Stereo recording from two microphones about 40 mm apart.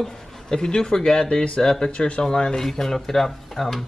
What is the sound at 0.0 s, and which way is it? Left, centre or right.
Speech, centre.